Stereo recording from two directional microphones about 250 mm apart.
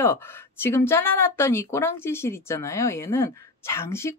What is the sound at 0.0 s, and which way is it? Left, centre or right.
Speech, centre.